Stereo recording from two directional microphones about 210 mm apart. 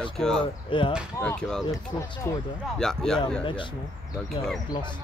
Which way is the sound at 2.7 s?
5° left (ahead or behind).